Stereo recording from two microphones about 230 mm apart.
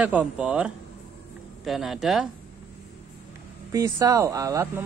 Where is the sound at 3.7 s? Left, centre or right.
Centre.